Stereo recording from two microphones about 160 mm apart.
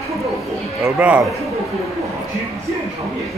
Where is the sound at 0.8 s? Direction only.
10° right (ahead or behind).